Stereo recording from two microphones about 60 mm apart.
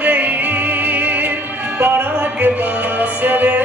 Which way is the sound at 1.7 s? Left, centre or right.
Right.